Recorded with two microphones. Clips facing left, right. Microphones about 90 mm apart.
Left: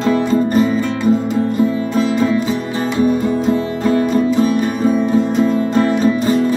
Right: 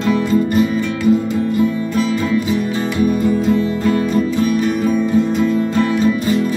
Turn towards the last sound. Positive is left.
turn(degrees=30)  # may be behind; listen again after turning